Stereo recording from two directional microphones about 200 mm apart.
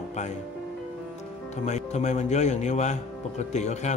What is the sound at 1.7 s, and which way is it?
A man's voice, 35° left (ahead or behind).